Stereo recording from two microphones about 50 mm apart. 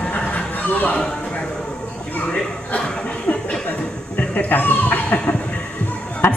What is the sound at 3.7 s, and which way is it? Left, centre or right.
Chuckle, left.